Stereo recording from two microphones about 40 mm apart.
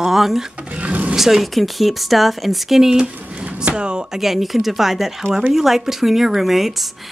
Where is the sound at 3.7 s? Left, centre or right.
Right.